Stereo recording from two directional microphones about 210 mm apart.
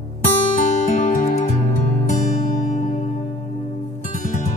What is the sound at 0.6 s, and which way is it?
Music, 35° left (ahead or behind).